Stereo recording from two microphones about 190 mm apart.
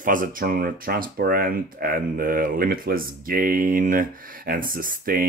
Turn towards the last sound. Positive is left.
turn(degrees=-50)  # may be behind; listen again after turning